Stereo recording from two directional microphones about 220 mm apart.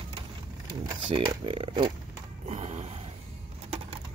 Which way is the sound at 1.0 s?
20° right (ahead or behind).